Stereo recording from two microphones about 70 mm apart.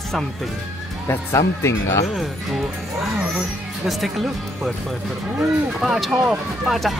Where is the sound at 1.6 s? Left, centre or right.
Left.